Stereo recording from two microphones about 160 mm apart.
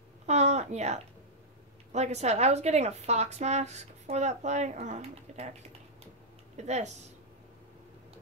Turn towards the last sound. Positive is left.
turn(degrees=-45)  # may be behind; listen again after turning